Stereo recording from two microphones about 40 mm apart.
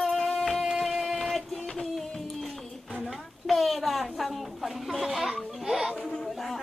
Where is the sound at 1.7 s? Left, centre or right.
Centre.